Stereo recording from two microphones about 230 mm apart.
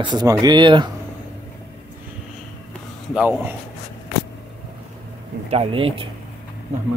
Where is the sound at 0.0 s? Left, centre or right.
Centre.